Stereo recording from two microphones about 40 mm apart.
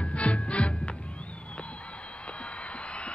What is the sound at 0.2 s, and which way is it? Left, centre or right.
Music, left.